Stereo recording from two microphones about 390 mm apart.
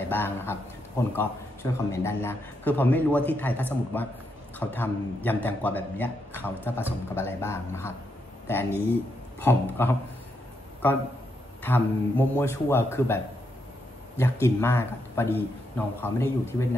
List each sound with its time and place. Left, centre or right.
0.0 s a man's voice: centre